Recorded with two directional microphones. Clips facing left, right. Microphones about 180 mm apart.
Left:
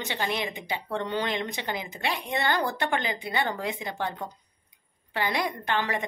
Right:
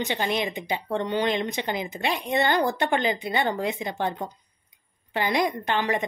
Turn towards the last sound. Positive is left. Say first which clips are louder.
# right 3 dB
turn(degrees=-20)  # may be behind; listen again after turning